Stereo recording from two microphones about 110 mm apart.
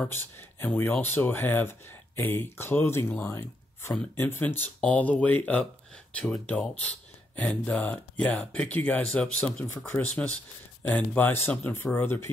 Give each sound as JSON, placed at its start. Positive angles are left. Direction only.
{"t": 0.1, "sound": "speech", "side_deg": 20}
{"t": 9.8, "sound": "speech", "side_deg": 20}